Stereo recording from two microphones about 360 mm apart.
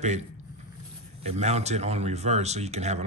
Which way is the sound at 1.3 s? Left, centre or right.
Centre.